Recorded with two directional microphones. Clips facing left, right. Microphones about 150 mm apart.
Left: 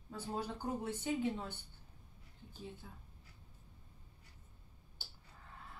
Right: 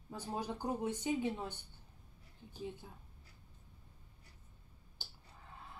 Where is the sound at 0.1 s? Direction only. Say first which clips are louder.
Right 1 dB; 15° right (ahead or behind).